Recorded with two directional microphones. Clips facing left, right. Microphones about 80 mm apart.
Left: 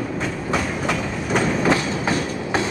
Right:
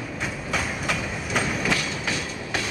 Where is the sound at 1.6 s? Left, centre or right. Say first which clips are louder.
Left 7 dB; left.